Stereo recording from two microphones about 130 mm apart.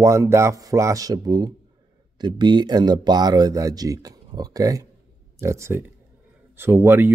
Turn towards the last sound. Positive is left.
turn(degrees=-20)  # may be behind; listen again after turning